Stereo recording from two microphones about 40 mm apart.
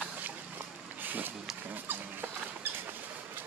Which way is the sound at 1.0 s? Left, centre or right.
Right.